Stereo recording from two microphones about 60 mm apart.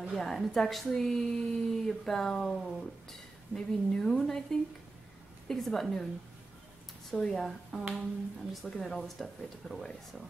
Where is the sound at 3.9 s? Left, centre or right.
Centre.